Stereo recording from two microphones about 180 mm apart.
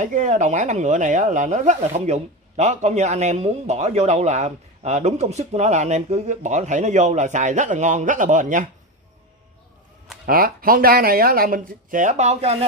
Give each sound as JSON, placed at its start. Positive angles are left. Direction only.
{"t": 0.0, "sound": "a woman's voice", "side_deg": -45}
{"t": 10.2, "sound": "speech", "side_deg": -55}